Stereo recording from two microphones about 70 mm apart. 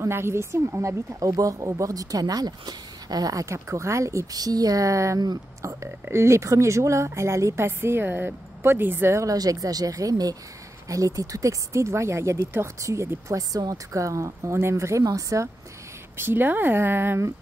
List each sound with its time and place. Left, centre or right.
0.0 s a woman's voice: right
1.2 s speech: right
3.4 s speech: right
4.4 s a woman's voice: right
9.2 s speech: right
16.2 s a woman's voice: right